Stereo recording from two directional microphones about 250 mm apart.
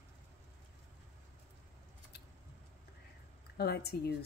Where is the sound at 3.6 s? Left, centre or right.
Left.